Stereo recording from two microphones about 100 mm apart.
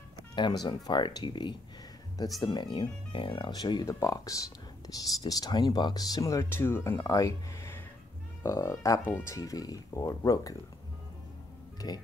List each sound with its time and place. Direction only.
0.4 s speech: 45° left (ahead or behind)
3.8 s speech: 35° left (ahead or behind)
11.8 s speech: 45° left (ahead or behind)